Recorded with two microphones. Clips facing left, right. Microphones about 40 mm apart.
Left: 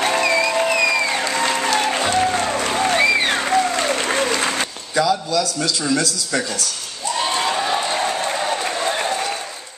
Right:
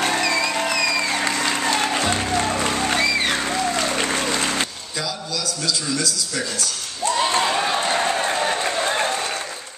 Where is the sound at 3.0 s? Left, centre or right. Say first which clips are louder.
Left 4 dB; left.